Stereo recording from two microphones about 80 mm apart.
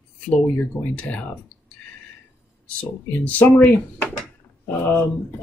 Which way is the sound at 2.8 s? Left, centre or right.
Centre.